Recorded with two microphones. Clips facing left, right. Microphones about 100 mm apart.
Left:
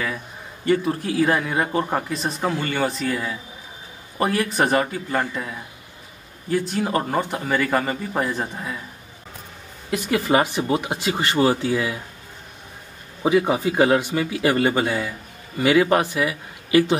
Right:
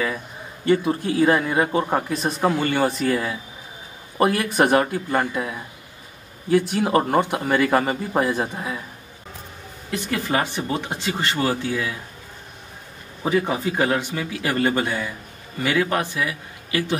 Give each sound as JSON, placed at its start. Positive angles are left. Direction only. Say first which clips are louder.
{"t": 0.7, "sound": "a man's voice", "louder": "right 1 dB", "side_deg": 0}
{"t": 6.5, "sound": "speech", "louder": "right 4 dB", "side_deg": -65}
{"t": 6.8, "sound": "a man's voice", "louder": "right 3 dB", "side_deg": -5}
{"t": 9.8, "sound": "a woman's voice", "louder": "left 4 dB", "side_deg": 15}
{"t": 13.2, "sound": "a man's voice", "louder": "left 3 dB", "side_deg": 10}